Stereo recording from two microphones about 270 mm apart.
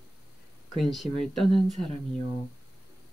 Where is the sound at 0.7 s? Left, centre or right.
Centre.